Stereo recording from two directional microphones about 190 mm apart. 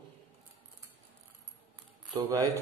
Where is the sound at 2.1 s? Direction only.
20° right (ahead or behind).